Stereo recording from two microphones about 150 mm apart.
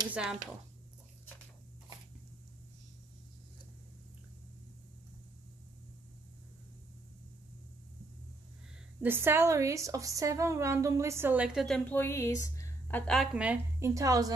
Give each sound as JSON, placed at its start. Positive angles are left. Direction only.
{"t": 0.1, "sound": "speech", "side_deg": -5}
{"t": 9.0, "sound": "a woman's voice", "side_deg": -15}
{"t": 11.9, "sound": "a woman's voice", "side_deg": 15}
{"t": 13.7, "sound": "a woman's voice", "side_deg": -20}